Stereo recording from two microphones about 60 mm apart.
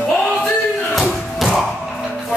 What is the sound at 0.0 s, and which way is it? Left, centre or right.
Music, centre.